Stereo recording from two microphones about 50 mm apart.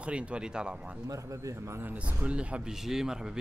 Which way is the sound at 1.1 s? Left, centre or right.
Right.